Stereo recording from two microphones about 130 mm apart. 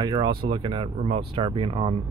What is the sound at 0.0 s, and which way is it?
Speech, 40° right (ahead or behind).